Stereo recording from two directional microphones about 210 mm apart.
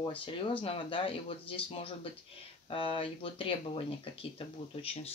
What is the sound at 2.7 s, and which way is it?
Speech, 25° left (ahead or behind).